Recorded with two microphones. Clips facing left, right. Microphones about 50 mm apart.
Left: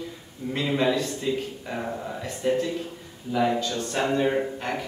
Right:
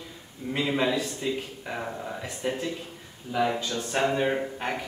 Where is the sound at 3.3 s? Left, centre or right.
Centre.